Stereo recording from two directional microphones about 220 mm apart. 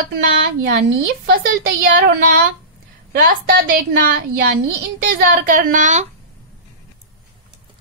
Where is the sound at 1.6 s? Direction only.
40° right (ahead or behind).